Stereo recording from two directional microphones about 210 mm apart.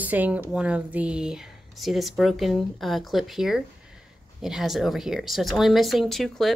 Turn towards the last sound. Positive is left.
turn(degrees=0)  # may be behind; listen again after turning